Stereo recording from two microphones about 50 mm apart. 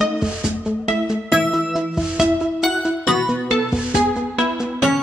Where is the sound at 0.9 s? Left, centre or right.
Centre.